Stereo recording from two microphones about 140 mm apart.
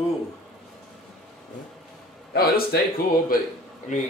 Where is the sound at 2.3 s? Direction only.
90° left.